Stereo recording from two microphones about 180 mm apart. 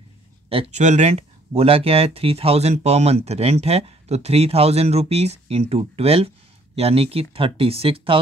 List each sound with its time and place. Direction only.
0.5 s speech: 35° right (ahead or behind)